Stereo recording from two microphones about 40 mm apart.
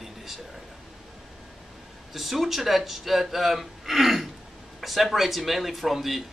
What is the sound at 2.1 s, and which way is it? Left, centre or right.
Speech, centre.